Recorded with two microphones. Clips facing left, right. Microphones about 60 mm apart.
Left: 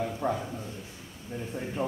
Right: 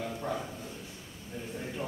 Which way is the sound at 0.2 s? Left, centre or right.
Left.